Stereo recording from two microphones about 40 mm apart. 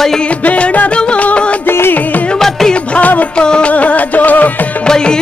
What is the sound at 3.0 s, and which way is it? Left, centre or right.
Music, left.